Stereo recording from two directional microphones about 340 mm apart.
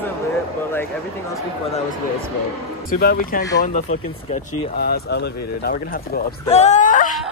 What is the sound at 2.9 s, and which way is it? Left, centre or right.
Speech, left.